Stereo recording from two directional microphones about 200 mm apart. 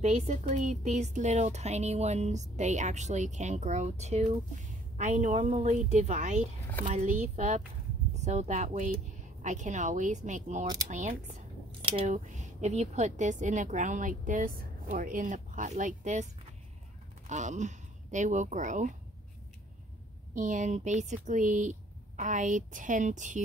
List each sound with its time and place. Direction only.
0.0 s a woman's voice: 35° right (ahead or behind)
17.3 s speech: 35° right (ahead or behind)
20.3 s a woman's voice: 40° right (ahead or behind)